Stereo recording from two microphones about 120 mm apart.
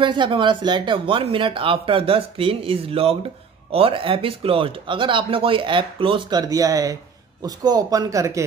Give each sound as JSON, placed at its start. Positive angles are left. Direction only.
{"t": 0.0, "sound": "speech", "side_deg": -40}